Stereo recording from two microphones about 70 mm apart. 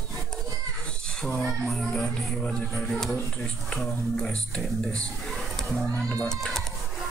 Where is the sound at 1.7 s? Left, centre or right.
Centre.